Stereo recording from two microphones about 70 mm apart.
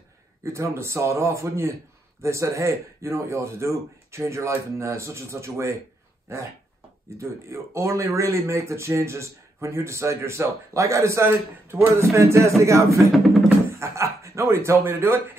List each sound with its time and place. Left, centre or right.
0.4 s speech: right
7.2 s speech: right
13.1 s music: centre
13.7 s speech: right